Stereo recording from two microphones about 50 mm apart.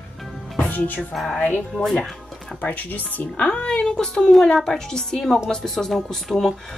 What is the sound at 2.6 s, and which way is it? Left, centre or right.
A woman's voice, left.